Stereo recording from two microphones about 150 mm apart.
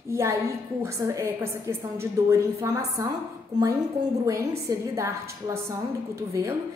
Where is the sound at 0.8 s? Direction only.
20° right (ahead or behind).